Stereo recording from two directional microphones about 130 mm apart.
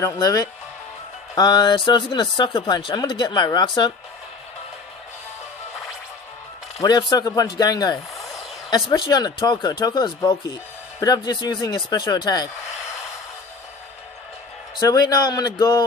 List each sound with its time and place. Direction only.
0.0 s a man's voice: 25° left (ahead or behind)
6.8 s speech: 35° left (ahead or behind)
14.8 s a man's voice: 30° left (ahead or behind)